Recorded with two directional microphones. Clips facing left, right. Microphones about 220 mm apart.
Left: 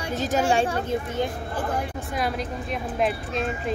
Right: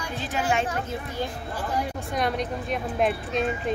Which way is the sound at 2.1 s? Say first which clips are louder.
Right 1 dB; 5° left (ahead or behind).